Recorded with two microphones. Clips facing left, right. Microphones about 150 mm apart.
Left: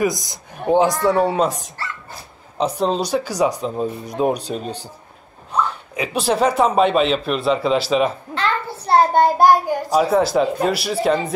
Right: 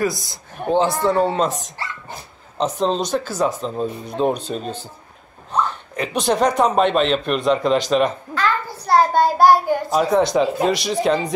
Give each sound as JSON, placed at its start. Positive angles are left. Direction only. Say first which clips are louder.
{"t": 0.0, "sound": "speech", "louder": "left 2 dB", "side_deg": 15}
{"t": 8.8, "sound": "speech", "louder": "left 1 dB", "side_deg": 25}